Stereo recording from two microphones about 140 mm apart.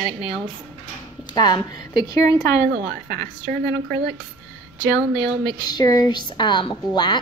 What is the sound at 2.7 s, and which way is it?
Speech, 90° right.